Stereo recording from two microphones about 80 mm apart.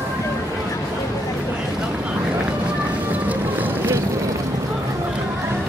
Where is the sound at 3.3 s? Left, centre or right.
Right.